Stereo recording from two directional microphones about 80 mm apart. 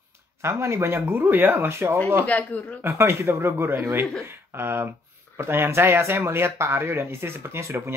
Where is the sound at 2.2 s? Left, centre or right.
Centre.